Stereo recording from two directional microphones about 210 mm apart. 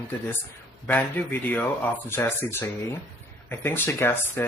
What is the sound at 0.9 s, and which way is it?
Speech, 5° left (ahead or behind).